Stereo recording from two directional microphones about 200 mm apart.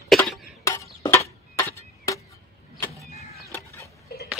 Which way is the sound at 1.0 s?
15° left (ahead or behind).